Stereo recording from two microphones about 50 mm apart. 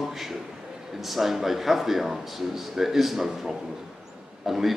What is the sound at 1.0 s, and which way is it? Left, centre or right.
A man's voice, centre.